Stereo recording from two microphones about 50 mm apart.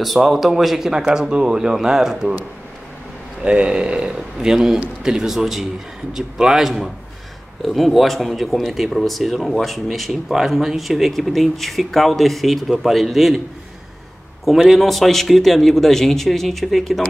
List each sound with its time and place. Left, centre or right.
0.0 s speech: centre
3.4 s speech: centre
14.4 s speech: centre